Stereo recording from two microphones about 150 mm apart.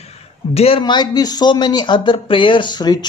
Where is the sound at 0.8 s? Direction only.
30° left (ahead or behind).